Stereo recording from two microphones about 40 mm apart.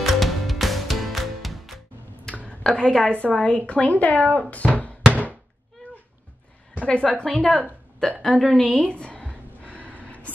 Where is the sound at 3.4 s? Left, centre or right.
Left.